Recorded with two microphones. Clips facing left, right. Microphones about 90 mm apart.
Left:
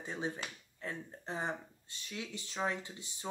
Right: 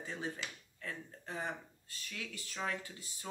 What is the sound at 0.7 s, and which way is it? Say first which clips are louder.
Speech: left 4 dB; 25° left (ahead or behind).